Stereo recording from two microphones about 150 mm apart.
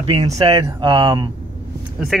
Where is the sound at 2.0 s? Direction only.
5° right (ahead or behind).